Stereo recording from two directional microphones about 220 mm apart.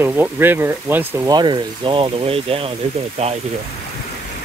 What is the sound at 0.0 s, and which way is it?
Speech, 10° right (ahead or behind).